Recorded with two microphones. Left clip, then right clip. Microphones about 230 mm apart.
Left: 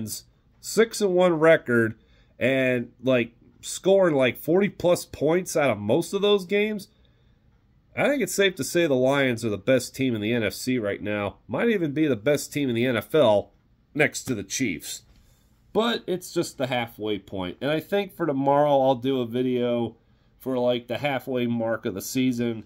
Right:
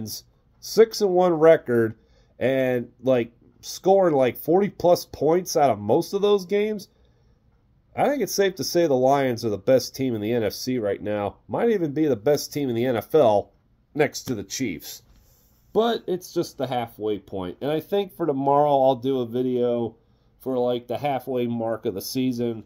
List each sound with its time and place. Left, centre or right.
0.7 s speech: centre
7.9 s speech: centre